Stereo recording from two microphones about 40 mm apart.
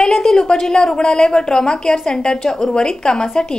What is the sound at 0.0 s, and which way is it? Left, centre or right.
A woman's voice, centre.